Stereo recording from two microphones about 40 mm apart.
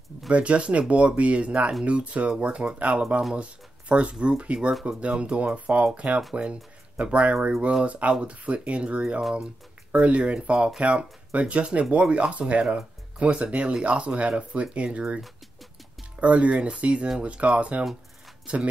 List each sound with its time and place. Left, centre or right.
0.3 s speech: right
16.2 s speech: right